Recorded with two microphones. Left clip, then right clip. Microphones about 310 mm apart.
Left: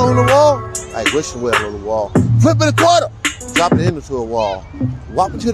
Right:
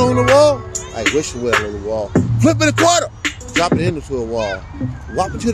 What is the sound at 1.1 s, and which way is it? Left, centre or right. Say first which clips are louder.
Speech: even; left.